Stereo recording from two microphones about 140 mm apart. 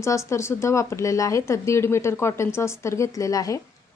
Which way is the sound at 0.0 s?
20° left (ahead or behind).